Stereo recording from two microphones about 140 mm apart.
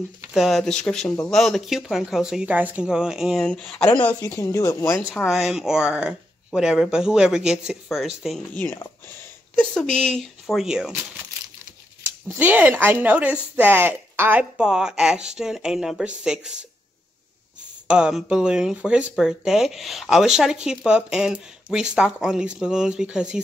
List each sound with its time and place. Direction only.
0.3 s speech: centre (ahead or behind)
4.2 s speech: 20° left (ahead or behind)
5.1 s speech: centre (ahead or behind)
8.7 s speech: 20° left (ahead or behind)
9.6 s speech: 5° left (ahead or behind)
12.3 s speech: 10° right (ahead or behind)
17.8 s speech: 5° right (ahead or behind)